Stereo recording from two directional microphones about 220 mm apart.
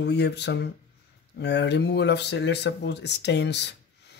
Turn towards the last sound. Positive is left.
turn(degrees=50)  # may be behind; listen again after turning